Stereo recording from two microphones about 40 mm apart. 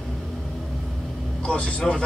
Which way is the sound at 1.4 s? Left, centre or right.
Left.